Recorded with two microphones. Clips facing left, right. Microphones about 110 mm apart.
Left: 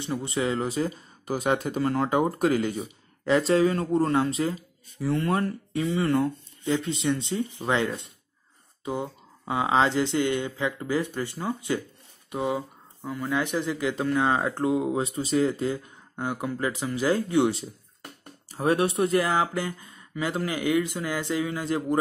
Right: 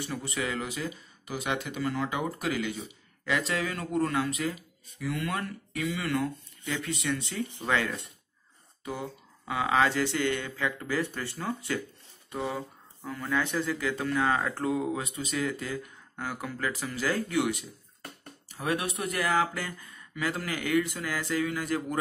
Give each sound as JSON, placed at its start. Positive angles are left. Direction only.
{"t": 0.0, "sound": "speech", "side_deg": 25}
{"t": 12.3, "sound": "a sound", "side_deg": 15}
{"t": 13.3, "sound": "speech", "side_deg": 15}